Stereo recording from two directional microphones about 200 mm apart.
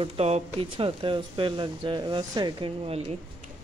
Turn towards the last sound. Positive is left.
turn(degrees=-30)  # may be behind; listen again after turning